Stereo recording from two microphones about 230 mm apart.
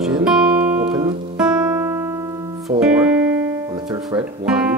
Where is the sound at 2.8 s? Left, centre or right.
Centre.